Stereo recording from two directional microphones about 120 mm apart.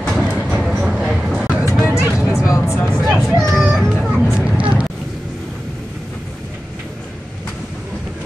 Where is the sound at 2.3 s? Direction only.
25° left (ahead or behind).